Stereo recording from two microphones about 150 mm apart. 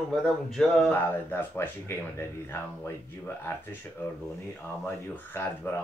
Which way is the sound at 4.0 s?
10° left (ahead or behind).